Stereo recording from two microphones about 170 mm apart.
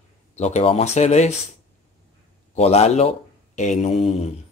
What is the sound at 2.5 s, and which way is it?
A man's voice, 40° left (ahead or behind).